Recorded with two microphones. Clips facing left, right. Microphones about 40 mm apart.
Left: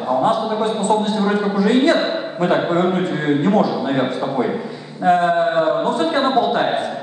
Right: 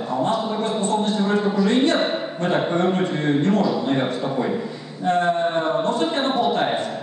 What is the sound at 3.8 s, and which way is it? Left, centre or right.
A man's voice, left.